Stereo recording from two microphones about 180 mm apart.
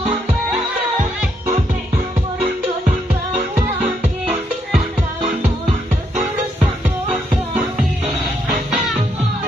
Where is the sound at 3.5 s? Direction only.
40° right (ahead or behind).